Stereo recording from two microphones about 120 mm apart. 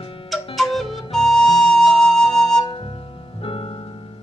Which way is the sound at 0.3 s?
Centre (ahead or behind).